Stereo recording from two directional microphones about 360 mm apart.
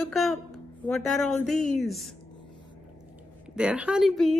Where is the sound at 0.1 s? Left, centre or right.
Centre.